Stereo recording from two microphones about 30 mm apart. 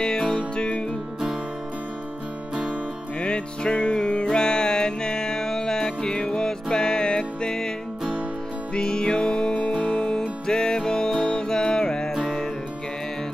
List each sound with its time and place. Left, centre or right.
0.6 s music: left
3.2 s music: left
8.7 s music: left